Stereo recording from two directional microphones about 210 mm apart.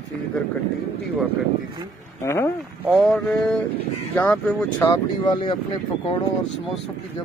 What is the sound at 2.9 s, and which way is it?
Speech, centre (ahead or behind).